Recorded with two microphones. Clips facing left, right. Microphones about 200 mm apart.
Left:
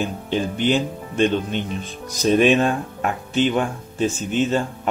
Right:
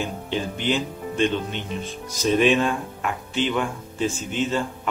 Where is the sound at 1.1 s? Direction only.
50° left (ahead or behind).